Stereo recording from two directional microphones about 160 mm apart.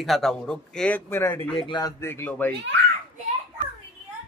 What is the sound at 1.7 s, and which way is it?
Speech, 25° left (ahead or behind).